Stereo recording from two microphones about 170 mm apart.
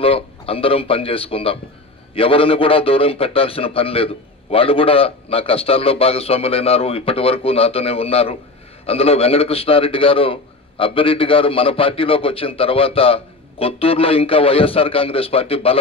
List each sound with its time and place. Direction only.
0.0 s a man's voice: 35° left (ahead or behind)